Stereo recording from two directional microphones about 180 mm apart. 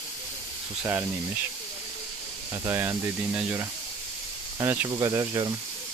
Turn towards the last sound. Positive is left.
turn(degrees=-20)  # may be behind; listen again after turning